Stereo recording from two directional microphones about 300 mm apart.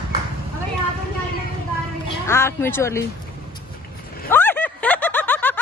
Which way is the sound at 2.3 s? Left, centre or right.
Centre.